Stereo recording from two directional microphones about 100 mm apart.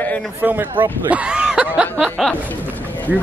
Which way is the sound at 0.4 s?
20° right (ahead or behind).